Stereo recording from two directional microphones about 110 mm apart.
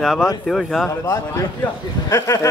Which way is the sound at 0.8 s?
25° left (ahead or behind).